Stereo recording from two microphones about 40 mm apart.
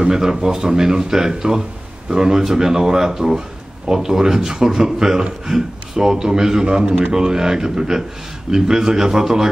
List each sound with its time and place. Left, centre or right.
0.0 s speech: centre